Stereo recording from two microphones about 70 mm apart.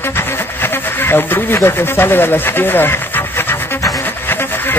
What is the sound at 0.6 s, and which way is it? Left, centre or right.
Speech, left.